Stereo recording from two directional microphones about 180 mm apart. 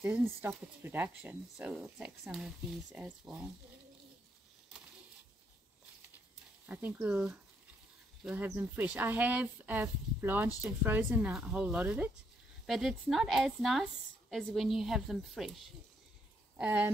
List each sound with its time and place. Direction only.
0.4 s speech: 10° right (ahead or behind)
6.6 s a woman's voice: 10° right (ahead or behind)